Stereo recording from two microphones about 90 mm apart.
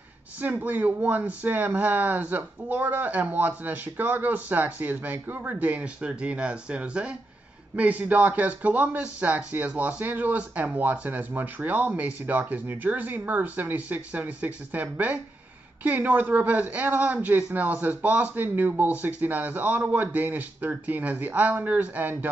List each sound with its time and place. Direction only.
0.4 s speech: 20° right (ahead or behind)